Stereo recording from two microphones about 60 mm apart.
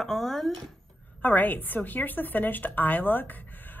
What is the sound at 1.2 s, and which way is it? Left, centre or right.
Speech, left.